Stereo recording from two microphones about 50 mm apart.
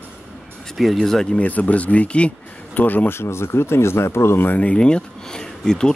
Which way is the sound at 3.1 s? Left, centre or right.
Left.